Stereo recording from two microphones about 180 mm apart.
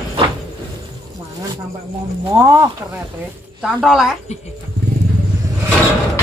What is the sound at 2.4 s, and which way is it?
Speech, 15° right (ahead or behind).